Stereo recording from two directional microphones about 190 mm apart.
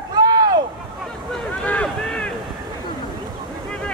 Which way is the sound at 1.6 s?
5° left (ahead or behind).